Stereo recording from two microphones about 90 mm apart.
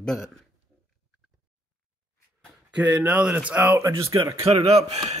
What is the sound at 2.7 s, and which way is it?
Speech, 15° right (ahead or behind).